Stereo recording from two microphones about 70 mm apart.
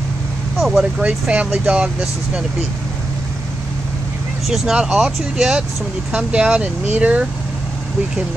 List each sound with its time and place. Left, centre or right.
0.6 s speech: centre
1.0 s speech: centre
4.5 s speech: centre